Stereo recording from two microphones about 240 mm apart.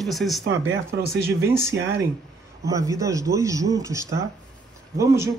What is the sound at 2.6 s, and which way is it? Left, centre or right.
A man's voice, centre.